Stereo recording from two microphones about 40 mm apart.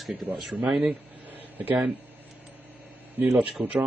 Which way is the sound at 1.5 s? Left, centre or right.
Right.